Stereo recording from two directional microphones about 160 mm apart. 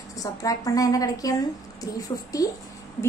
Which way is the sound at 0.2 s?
20° left (ahead or behind).